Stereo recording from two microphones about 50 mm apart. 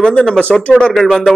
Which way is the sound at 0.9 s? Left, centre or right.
Centre.